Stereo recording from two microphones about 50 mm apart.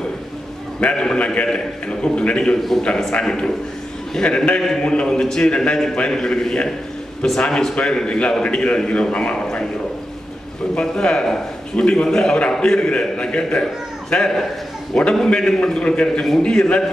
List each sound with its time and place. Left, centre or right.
0.7 s a man's voice: left
10.7 s a man's voice: centre
14.1 s a man's voice: centre